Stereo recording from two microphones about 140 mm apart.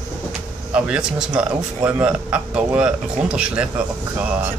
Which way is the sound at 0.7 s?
5° right (ahead or behind).